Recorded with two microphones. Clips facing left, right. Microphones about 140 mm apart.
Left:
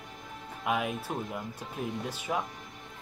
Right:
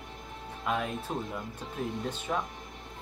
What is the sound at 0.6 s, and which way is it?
Speech, 10° left (ahead or behind).